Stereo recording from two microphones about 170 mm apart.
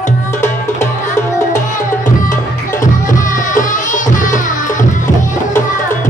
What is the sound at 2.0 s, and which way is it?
Music, 50° left (ahead or behind).